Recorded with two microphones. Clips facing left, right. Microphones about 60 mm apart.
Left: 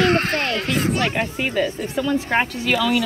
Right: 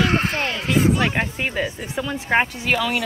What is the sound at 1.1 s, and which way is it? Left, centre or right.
Speech, centre.